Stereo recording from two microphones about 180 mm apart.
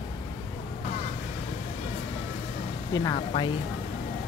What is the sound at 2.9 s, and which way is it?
Speech, 25° left (ahead or behind).